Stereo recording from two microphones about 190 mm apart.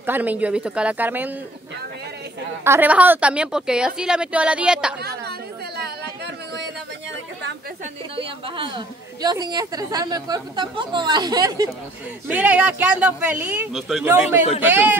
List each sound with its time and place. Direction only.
0.0 s a woman's voice: 10° right (ahead or behind)
2.6 s a woman's voice: 10° right (ahead or behind)
8.2 s a woman's voice: 25° right (ahead or behind)
12.3 s a woman's voice: 5° right (ahead or behind)
14.0 s a woman's voice: 10° right (ahead or behind)